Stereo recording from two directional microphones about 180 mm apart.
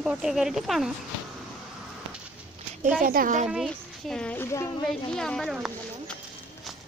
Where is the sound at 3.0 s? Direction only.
50° right (ahead or behind).